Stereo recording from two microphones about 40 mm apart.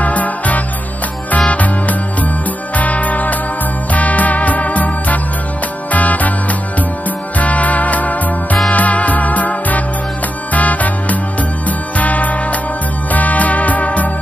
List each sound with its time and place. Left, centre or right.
0.0 s music: left
7.3 s music: left